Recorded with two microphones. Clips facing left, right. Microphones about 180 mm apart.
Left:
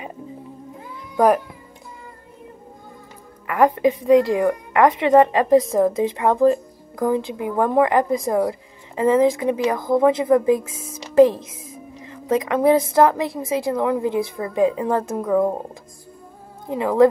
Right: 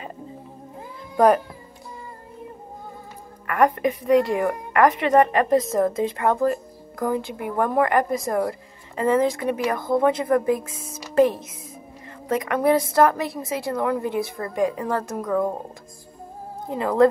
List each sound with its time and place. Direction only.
1.1 s a child's voice: 5° left (ahead or behind)
3.4 s a woman's voice: 25° left (ahead or behind)
12.3 s speech: 15° left (ahead or behind)
14.0 s speech: 90° left
14.5 s a woman's voice: 20° left (ahead or behind)
16.6 s speech: 15° left (ahead or behind)